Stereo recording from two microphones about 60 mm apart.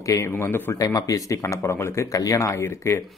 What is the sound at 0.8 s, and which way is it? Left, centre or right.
Speech, left.